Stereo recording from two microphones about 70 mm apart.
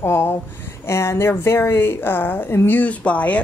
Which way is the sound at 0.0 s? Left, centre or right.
Left.